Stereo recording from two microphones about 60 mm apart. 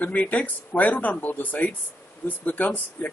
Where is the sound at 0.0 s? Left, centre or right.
Left.